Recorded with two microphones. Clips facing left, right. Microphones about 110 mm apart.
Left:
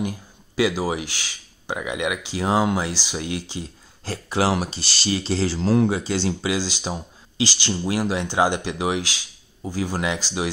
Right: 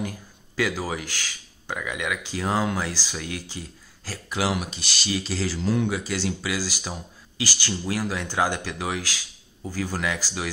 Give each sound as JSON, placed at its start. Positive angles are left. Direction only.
{"t": 0.6, "sound": "speech", "side_deg": 15}